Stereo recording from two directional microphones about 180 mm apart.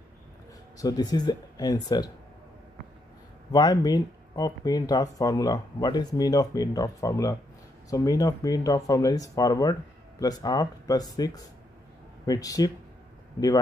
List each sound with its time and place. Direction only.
0.7 s speech: 20° left (ahead or behind)
3.5 s speech: 20° left (ahead or behind)